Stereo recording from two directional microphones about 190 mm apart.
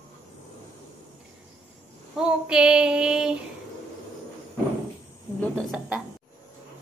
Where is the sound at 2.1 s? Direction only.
5° right (ahead or behind).